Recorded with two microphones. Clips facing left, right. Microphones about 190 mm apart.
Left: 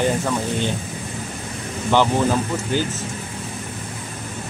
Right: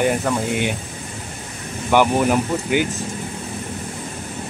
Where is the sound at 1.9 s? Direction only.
15° right (ahead or behind).